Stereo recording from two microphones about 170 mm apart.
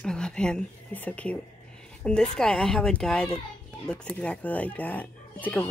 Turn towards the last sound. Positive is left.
turn(degrees=10)  # may be behind; listen again after turning